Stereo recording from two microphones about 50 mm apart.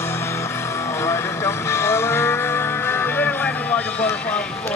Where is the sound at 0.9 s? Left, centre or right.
Left.